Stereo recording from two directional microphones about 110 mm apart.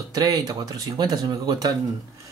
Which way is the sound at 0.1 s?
35° right (ahead or behind).